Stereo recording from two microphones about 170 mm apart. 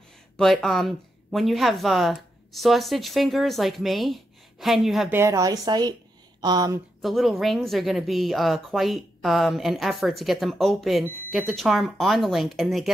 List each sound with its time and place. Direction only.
0.4 s a woman's voice: centre (ahead or behind)
5.1 s speech: 15° right (ahead or behind)
7.0 s a woman's voice: centre (ahead or behind)